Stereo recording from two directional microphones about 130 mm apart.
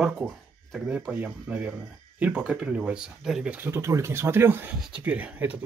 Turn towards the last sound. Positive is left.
turn(degrees=-10)  # may be behind; listen again after turning